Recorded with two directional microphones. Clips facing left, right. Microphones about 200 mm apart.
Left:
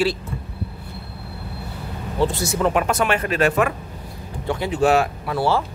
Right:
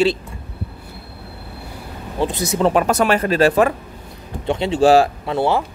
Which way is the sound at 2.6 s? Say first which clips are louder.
Right 4 dB; 35° right (ahead or behind).